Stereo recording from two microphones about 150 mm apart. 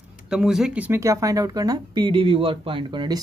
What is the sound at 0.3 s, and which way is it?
Speech, 5° right (ahead or behind).